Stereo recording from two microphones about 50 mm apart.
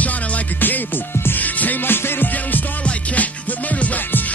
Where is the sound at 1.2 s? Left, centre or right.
Left.